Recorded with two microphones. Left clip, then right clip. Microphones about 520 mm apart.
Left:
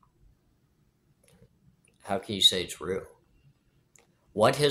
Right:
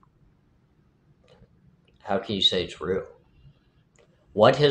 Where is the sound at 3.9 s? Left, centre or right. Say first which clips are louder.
Right 5 dB; left.